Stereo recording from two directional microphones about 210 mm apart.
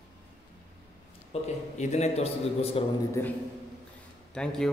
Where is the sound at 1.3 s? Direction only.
30° left (ahead or behind).